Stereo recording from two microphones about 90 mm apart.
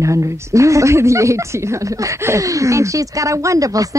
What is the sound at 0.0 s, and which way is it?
Speech, 35° right (ahead or behind).